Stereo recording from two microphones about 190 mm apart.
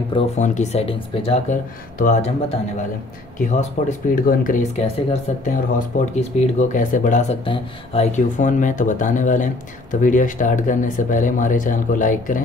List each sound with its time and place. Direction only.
0.4 s speech: 35° left (ahead or behind)
1.5 s speech: 40° left (ahead or behind)
3.8 s speech: 40° left (ahead or behind)